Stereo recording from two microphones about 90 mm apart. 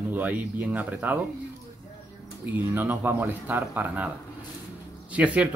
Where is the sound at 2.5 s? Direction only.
20° right (ahead or behind).